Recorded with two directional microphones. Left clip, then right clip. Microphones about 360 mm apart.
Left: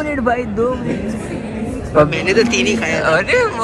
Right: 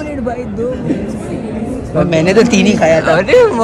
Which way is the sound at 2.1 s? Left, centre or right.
Centre.